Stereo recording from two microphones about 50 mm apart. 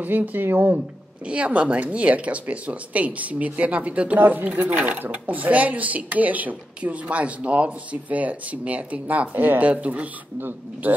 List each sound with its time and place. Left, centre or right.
0.0 s speech: right
1.2 s speech: right
4.2 s speech: right
9.7 s speech: right